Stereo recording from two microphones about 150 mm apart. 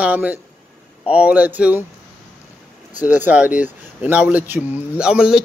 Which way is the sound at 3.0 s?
10° right (ahead or behind).